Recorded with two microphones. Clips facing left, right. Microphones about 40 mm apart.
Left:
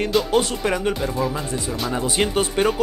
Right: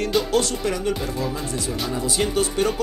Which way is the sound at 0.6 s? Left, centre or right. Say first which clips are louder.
Left 2 dB; left.